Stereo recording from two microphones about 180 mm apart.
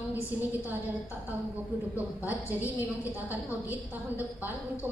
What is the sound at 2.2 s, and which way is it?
A woman's voice, 10° right (ahead or behind).